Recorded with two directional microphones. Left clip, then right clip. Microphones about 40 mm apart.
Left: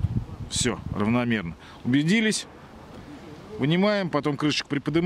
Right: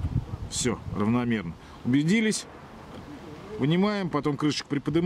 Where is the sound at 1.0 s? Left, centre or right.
Left.